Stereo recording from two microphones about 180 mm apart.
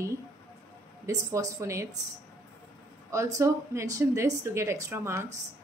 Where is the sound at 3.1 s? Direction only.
15° right (ahead or behind).